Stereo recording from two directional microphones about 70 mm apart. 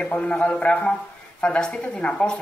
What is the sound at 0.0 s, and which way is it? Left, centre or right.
Speech, centre.